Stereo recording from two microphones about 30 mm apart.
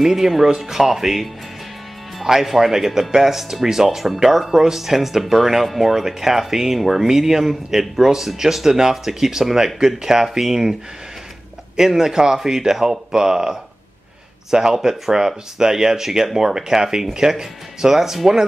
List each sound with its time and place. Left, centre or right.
0.0 s speech: centre
2.4 s speech: centre